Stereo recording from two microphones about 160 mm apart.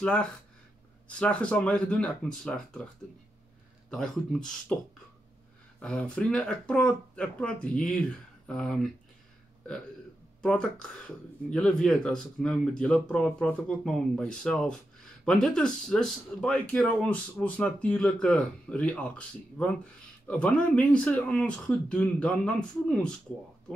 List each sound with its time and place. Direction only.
0.0 s speech: 5° left (ahead or behind)
3.9 s speech: 5° left (ahead or behind)
5.8 s speech: 5° left (ahead or behind)
10.4 s speech: 5° left (ahead or behind)